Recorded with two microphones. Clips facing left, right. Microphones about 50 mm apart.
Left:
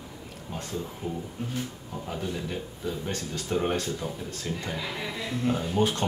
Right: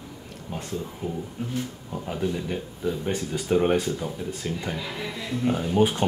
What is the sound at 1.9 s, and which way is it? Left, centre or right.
Speech, centre.